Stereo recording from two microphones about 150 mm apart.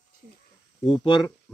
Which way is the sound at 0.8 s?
35° left (ahead or behind).